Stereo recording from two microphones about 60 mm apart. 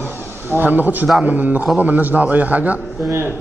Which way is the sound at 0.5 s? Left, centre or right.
Right.